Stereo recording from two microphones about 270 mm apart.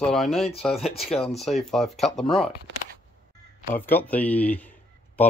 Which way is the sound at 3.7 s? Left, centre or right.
Centre.